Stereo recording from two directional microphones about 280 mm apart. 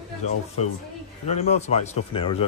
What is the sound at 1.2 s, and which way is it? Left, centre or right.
A man's voice, left.